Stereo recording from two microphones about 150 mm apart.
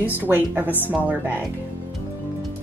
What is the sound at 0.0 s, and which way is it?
A woman's voice, 10° right (ahead or behind).